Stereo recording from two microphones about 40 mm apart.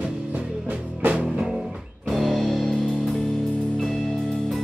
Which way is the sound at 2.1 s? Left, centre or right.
Centre.